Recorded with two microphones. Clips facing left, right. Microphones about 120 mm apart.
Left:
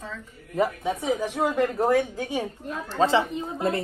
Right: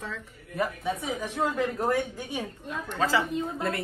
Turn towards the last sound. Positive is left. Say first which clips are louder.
# left 3 dB
turn(degrees=25)  # may be behind; listen again after turning